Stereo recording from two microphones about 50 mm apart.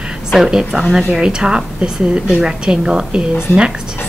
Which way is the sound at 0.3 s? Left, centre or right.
Centre.